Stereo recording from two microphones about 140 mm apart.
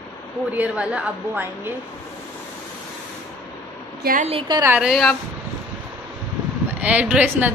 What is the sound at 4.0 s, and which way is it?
Speech, 85° right.